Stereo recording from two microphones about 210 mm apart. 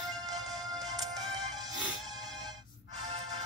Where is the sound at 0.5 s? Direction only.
Centre (ahead or behind).